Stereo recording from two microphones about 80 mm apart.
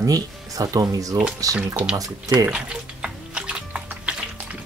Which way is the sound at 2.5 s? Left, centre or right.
Centre.